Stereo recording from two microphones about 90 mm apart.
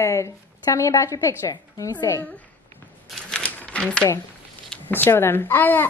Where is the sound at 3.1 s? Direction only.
10° left (ahead or behind).